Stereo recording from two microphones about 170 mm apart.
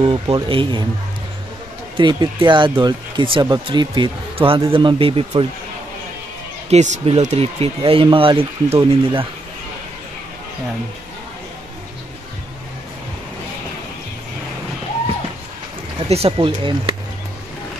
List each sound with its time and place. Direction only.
0.0 s speech: 30° right (ahead or behind)
2.0 s speech: 25° right (ahead or behind)
6.7 s speech: 40° right (ahead or behind)
16.1 s speech: 35° right (ahead or behind)